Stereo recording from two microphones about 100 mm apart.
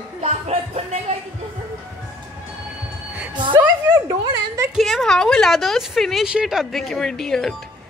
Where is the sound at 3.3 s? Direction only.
55° right (ahead or behind).